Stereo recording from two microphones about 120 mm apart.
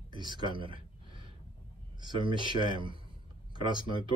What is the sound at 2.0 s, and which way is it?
Speech, 40° right (ahead or behind).